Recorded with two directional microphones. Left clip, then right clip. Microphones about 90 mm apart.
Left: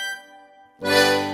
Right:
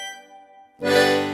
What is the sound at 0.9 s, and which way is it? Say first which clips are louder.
Music: even; 30° right (ahead or behind).